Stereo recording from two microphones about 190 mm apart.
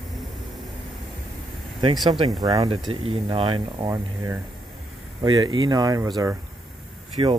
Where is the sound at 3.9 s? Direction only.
15° right (ahead or behind).